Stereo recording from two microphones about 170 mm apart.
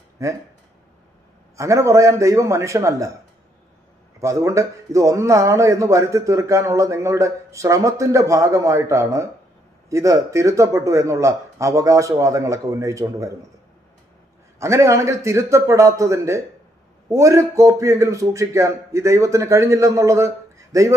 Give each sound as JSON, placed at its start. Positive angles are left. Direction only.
{"t": 0.2, "sound": "a man's voice", "side_deg": -20}
{"t": 1.6, "sound": "a man's voice", "side_deg": -20}
{"t": 4.2, "sound": "a man's voice", "side_deg": -20}
{"t": 14.6, "sound": "a man's voice", "side_deg": -15}